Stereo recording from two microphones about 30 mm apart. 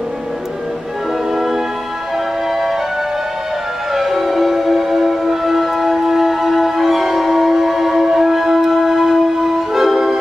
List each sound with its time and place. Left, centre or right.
3.9 s music: centre